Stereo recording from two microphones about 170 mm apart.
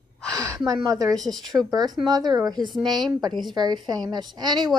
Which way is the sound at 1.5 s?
25° right (ahead or behind).